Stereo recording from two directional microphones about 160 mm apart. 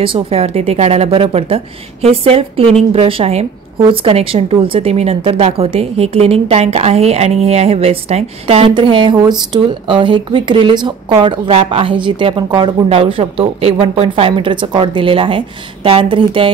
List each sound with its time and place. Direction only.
0.0 s speech: 35° right (ahead or behind)